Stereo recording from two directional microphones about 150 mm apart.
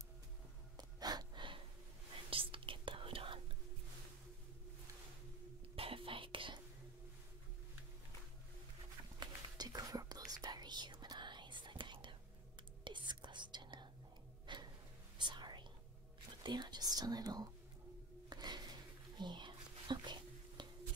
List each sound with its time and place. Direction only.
0.7 s gasp: 25° right (ahead or behind)
2.2 s whispering: 35° right (ahead or behind)
5.8 s whispering: 35° right (ahead or behind)
9.2 s whispering: 25° right (ahead or behind)
14.4 s a sound: 30° right (ahead or behind)
15.1 s whispering: 30° right (ahead or behind)
18.3 s a sound: 25° right (ahead or behind)